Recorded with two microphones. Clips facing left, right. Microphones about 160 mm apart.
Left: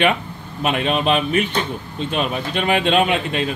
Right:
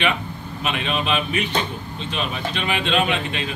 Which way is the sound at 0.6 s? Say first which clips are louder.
Left 5 dB; 45° left (ahead or behind).